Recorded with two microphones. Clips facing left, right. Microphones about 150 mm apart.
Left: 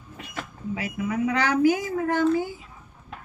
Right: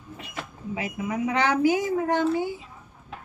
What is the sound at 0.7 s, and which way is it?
Speech, 20° right (ahead or behind).